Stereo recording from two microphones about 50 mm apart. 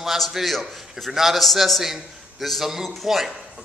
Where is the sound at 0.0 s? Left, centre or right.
Centre.